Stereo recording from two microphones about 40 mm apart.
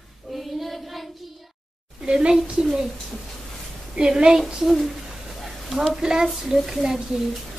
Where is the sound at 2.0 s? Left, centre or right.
Right.